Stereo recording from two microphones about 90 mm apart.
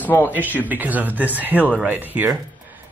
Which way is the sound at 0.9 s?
20° right (ahead or behind).